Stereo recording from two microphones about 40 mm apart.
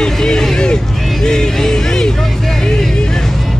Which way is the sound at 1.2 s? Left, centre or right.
Centre.